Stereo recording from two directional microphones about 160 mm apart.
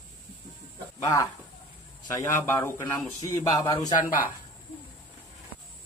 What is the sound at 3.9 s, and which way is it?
Speech, 55° left (ahead or behind).